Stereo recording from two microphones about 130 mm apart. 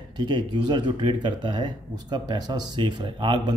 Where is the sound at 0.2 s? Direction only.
35° right (ahead or behind).